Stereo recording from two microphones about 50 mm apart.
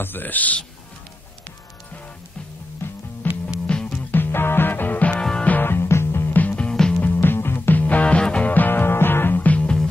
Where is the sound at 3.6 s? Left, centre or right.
Centre.